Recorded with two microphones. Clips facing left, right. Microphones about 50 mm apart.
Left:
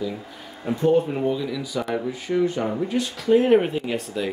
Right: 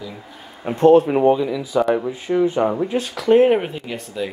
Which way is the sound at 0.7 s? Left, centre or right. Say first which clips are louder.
Right 8 dB; right.